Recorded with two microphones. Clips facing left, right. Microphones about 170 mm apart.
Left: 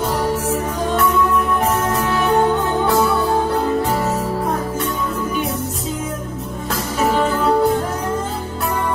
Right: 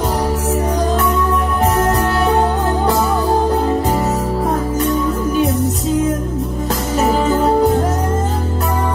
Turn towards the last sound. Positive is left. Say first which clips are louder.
# right 3 dB
turn(degrees=-40)  # may be behind; listen again after turning